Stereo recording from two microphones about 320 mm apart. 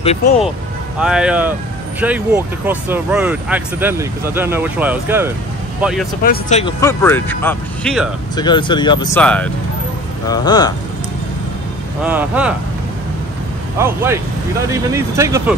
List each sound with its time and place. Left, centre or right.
1.0 s speech: centre
6.2 s speech: left
6.6 s speech: centre
8.4 s speech: centre
12.0 s speech: centre
13.7 s speech: centre